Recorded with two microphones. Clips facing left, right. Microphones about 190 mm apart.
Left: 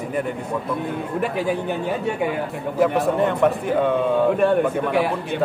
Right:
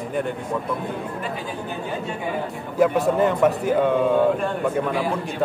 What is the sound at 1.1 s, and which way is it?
Speech, 65° left (ahead or behind).